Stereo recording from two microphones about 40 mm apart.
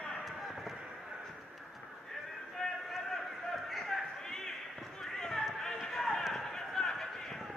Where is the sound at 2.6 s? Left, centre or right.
Left.